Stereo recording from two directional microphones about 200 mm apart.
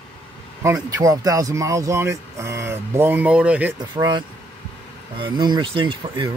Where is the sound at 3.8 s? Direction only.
20° right (ahead or behind).